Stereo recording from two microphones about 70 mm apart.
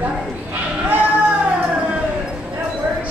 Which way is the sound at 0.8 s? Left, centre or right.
Right.